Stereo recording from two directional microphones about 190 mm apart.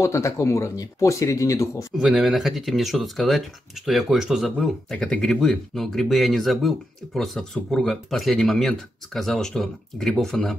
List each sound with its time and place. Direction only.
0.0 s speech: 15° left (ahead or behind)
2.0 s speech: 5° right (ahead or behind)